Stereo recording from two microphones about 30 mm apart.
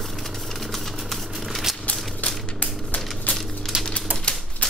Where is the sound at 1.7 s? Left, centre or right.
Centre.